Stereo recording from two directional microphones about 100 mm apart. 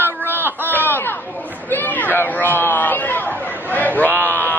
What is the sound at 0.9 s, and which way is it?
Chatter, 20° left (ahead or behind).